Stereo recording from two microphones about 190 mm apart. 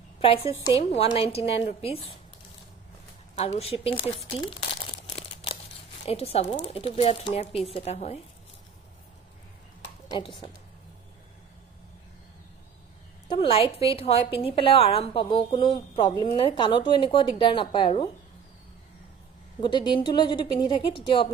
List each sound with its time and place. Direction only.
0.2 s speech: 30° left (ahead or behind)
3.3 s speech: 35° left (ahead or behind)
4.1 s crumpling: 30° left (ahead or behind)
6.0 s speech: 30° left (ahead or behind)
10.0 s a woman's voice: 25° left (ahead or behind)
13.3 s a woman's voice: 30° left (ahead or behind)
19.6 s a woman's voice: 25° left (ahead or behind)